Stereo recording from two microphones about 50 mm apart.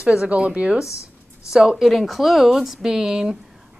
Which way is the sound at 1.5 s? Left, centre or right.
Centre.